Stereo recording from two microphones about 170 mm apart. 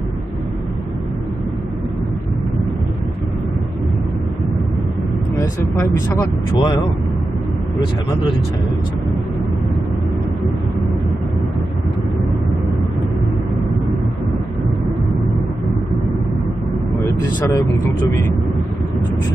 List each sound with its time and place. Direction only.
5.4 s speech: 25° left (ahead or behind)
17.0 s speech: 20° left (ahead or behind)